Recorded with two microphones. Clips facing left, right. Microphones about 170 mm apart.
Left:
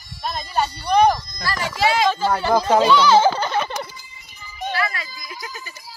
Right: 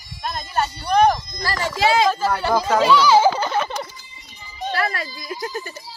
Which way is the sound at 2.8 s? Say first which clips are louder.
Right 2 dB; 5° right (ahead or behind).